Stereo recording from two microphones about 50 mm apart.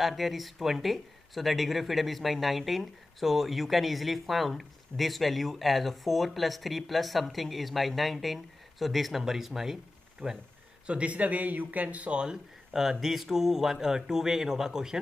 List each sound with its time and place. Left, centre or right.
0.0 s speech: centre
10.2 s speech: right
13.0 s speech: centre